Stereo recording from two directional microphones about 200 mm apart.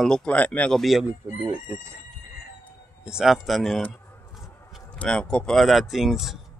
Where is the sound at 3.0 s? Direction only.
5° right (ahead or behind).